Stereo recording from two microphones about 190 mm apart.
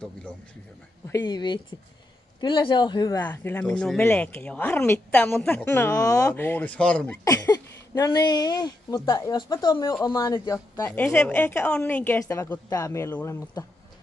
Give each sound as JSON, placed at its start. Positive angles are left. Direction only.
{"t": 1.0, "sound": "speech", "side_deg": 20}
{"t": 3.3, "sound": "speech", "side_deg": 10}
{"t": 7.2, "sound": "speech", "side_deg": 15}
{"t": 10.9, "sound": "speech", "side_deg": 5}